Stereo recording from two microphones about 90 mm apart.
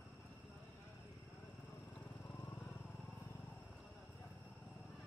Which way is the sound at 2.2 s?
25° left (ahead or behind).